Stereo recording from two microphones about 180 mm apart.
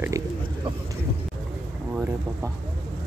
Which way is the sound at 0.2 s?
20° right (ahead or behind).